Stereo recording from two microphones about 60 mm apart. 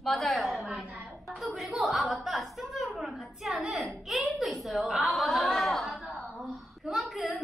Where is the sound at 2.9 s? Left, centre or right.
Centre.